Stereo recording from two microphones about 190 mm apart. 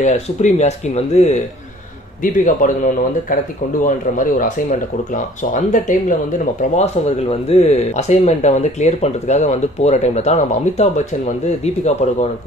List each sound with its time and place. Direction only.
0.0 s speech: 35° left (ahead or behind)
2.4 s speech: 45° left (ahead or behind)